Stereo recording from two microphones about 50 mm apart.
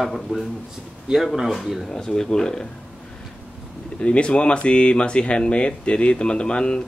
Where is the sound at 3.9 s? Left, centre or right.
Left.